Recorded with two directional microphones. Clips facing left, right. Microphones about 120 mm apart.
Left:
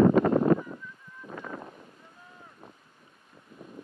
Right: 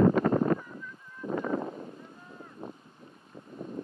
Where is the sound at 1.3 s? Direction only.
45° right (ahead or behind).